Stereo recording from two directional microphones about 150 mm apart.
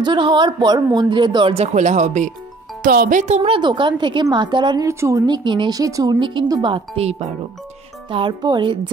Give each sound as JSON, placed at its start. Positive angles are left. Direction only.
{"t": 0.0, "sound": "speech", "side_deg": -30}
{"t": 2.8, "sound": "speech", "side_deg": -75}
{"t": 3.2, "sound": "speech", "side_deg": -45}
{"t": 4.8, "sound": "a woman's voice", "side_deg": -20}
{"t": 7.0, "sound": "speech", "side_deg": -45}
{"t": 8.1, "sound": "speech", "side_deg": -30}